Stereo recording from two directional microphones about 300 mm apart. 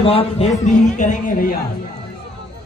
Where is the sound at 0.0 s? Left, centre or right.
Centre.